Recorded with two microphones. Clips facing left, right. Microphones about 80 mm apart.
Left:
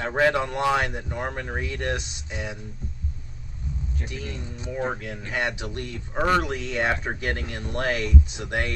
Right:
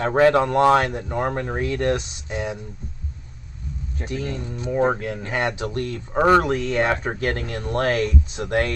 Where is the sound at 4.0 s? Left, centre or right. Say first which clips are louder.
Right 10 dB; right.